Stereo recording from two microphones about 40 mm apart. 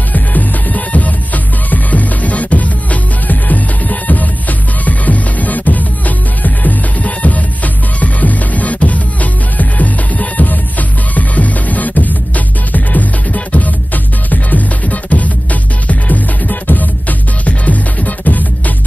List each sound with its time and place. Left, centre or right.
0.1 s music: left